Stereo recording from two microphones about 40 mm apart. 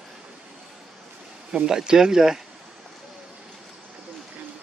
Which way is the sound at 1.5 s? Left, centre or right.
Centre.